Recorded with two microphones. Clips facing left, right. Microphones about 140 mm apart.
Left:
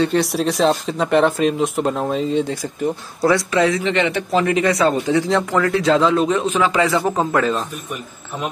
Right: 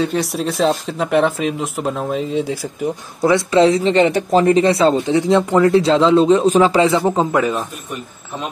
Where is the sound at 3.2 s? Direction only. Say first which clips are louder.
Right 4 dB; 25° right (ahead or behind).